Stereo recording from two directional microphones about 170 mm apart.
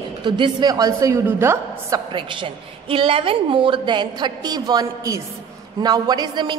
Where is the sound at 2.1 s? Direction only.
30° right (ahead or behind).